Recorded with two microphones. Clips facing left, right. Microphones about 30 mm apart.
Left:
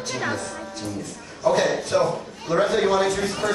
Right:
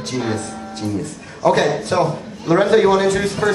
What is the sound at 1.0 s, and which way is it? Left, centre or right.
A man's voice, right.